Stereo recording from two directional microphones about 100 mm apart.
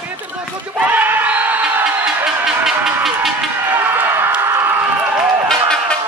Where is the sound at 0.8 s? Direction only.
15° right (ahead or behind).